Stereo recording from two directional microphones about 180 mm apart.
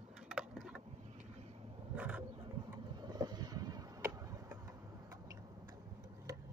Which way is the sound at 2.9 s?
20° right (ahead or behind).